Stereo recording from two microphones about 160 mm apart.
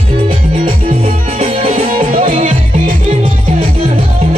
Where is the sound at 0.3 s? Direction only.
35° right (ahead or behind).